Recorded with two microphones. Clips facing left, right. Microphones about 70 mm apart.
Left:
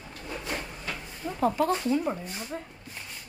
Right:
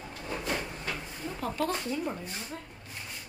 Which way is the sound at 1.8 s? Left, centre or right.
Left.